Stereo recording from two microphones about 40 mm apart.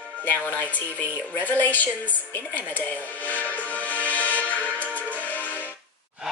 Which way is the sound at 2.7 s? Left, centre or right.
Left.